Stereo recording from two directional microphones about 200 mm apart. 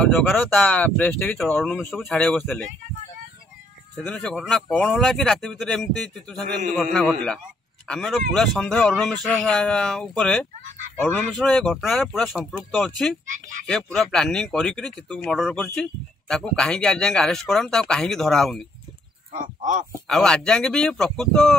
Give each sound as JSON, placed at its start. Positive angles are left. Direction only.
{"t": 0.0, "sound": "speech", "side_deg": 0}
{"t": 3.9, "sound": "speech", "side_deg": 5}
{"t": 13.3, "sound": "speech", "side_deg": -40}
{"t": 13.9, "sound": "speech", "side_deg": 5}
{"t": 19.3, "sound": "speech", "side_deg": -40}
{"t": 20.1, "sound": "speech", "side_deg": 0}